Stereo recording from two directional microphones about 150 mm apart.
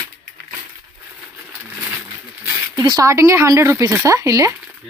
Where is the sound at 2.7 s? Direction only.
25° right (ahead or behind).